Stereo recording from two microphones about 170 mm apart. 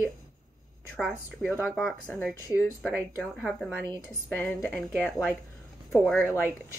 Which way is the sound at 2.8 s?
5° left (ahead or behind).